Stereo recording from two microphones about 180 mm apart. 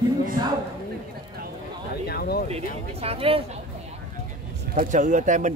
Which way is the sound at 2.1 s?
60° left (ahead or behind).